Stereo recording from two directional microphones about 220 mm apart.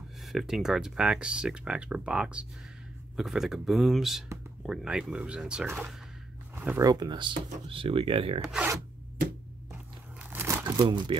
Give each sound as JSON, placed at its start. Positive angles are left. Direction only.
{"t": 0.2, "sound": "speech", "side_deg": 0}
{"t": 10.3, "sound": "crumpling", "side_deg": -15}